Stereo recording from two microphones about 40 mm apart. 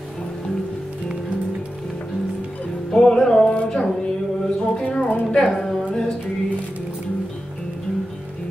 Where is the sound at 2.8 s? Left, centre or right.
Centre.